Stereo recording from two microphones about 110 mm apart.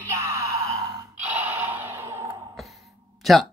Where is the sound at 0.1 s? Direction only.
25° right (ahead or behind).